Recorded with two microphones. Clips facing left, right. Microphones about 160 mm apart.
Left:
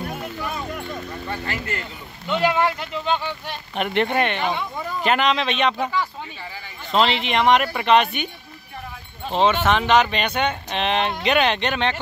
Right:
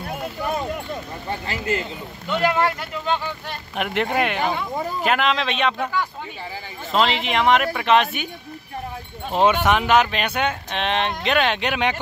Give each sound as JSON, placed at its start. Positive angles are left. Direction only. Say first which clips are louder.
{"t": 1.5, "sound": "speech", "louder": "right 4 dB", "side_deg": -25}
{"t": 2.4, "sound": "speech", "louder": "even", "side_deg": 5}
{"t": 2.8, "sound": "speech", "louder": "left 1 dB", "side_deg": -5}
{"t": 6.9, "sound": "speech", "louder": "left 1 dB", "side_deg": 0}
{"t": 9.3, "sound": "speech", "louder": "right 1 dB", "side_deg": -10}